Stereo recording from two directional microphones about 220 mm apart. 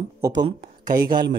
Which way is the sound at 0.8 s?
40° right (ahead or behind).